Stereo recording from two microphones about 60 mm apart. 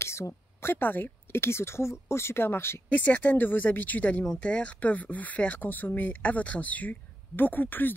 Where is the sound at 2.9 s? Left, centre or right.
Left.